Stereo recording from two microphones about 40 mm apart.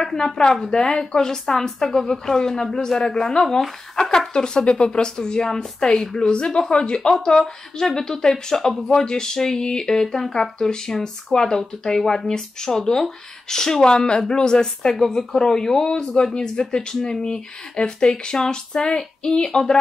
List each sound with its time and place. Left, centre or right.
0.0 s speech: centre